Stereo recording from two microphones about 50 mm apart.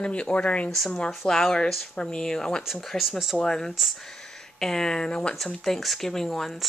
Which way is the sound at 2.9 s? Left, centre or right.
Centre.